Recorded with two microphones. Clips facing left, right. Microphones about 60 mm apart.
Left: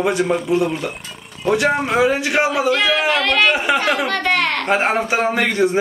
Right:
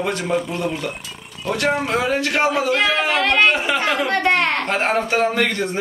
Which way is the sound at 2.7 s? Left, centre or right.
Centre.